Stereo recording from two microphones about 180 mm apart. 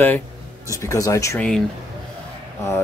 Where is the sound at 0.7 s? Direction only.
20° left (ahead or behind).